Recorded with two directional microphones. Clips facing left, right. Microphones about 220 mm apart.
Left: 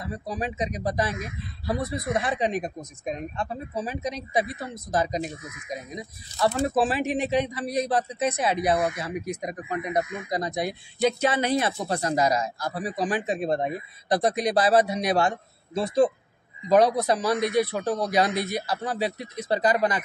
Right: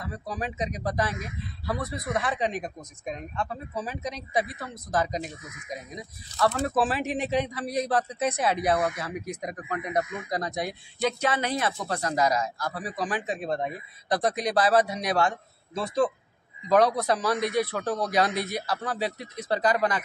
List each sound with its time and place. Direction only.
0.0 s speech: 25° left (ahead or behind)
7.1 s a man's voice: centre (ahead or behind)
7.9 s speech: 20° left (ahead or behind)
16.8 s speech: 25° left (ahead or behind)
17.4 s a man's voice: centre (ahead or behind)
17.6 s speech: 20° left (ahead or behind)
18.3 s a man's voice: centre (ahead or behind)
18.7 s speech: 20° left (ahead or behind)